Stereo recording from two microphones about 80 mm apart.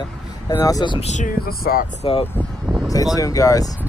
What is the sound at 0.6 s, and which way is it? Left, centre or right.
Speech, left.